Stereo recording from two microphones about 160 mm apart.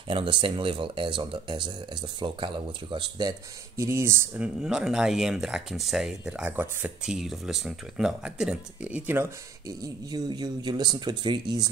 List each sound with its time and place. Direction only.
0.1 s speech: 30° right (ahead or behind); by 4.5 s 15° right (ahead or behind)
4.6 s speech: 5° right (ahead or behind); by 11.7 s 25° right (ahead or behind)